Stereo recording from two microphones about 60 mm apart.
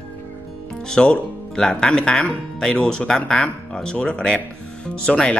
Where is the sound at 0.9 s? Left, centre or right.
Centre.